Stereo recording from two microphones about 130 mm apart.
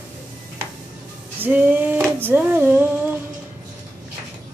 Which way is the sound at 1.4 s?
15° right (ahead or behind).